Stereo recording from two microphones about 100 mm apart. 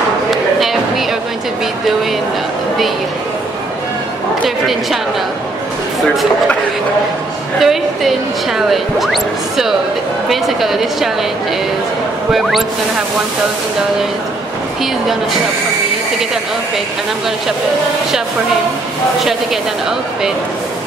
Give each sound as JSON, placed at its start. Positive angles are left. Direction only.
{"t": 0.3, "sound": "a sound", "side_deg": 0}
{"t": 7.6, "sound": "speech", "side_deg": 0}
{"t": 12.3, "sound": "speech", "side_deg": 0}